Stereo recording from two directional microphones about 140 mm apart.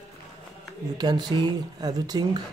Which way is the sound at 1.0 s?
30° right (ahead or behind).